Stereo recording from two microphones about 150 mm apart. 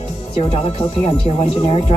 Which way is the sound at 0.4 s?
40° left (ahead or behind).